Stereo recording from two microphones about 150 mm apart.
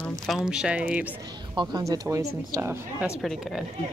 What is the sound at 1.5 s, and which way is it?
Speech, 25° right (ahead or behind).